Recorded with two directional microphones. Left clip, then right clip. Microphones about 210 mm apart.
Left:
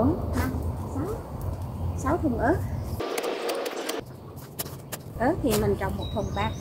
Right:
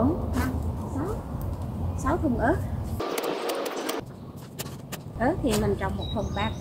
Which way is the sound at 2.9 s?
5° left (ahead or behind).